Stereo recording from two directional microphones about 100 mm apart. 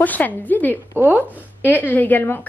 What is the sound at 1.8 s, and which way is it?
Speech, 15° left (ahead or behind).